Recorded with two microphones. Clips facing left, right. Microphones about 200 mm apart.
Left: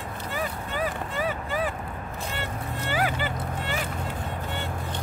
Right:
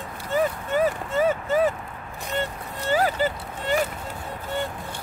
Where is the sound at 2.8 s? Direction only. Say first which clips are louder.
Right 6 dB; 40° right (ahead or behind).